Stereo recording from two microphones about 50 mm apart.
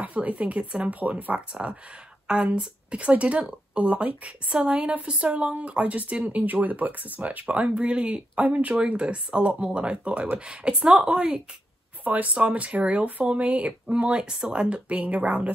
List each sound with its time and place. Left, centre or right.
0.0 s speech: right
12.0 s speech: right
12.4 s speech: right